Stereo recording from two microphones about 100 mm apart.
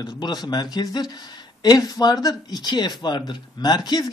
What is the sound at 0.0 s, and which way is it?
A man's voice, 45° left (ahead or behind).